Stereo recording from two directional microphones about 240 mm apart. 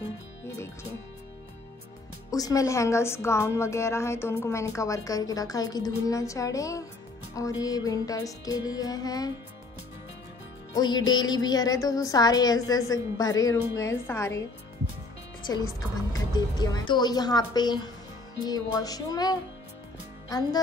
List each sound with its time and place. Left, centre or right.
2.3 s a woman's voice: centre
10.7 s a woman's voice: centre
15.4 s a woman's voice: centre